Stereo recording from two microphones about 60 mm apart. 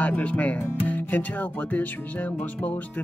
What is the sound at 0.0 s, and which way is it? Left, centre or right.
Music, left.